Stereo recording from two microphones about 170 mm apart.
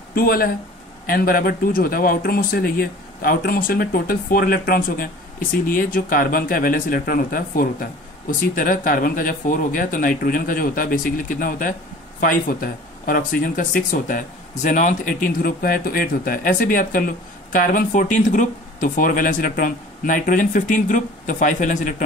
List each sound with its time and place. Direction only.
0.1 s speech: 60° left (ahead or behind)